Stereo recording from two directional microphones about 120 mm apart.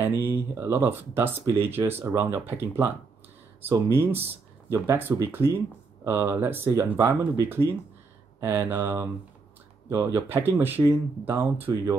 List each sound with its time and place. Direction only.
0.0 s speech: 20° right (ahead or behind)